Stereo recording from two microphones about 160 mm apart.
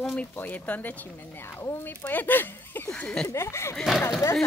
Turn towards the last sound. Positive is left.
turn(degrees=0)  # may be behind; listen again after turning